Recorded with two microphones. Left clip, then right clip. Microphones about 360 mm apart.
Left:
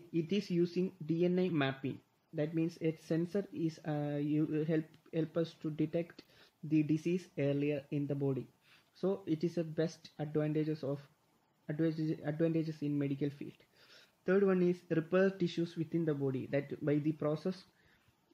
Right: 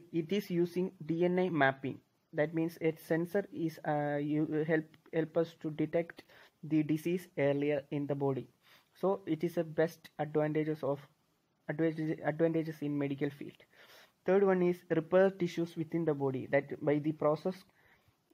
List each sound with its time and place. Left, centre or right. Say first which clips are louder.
0.6 s speech: right 1 dB; right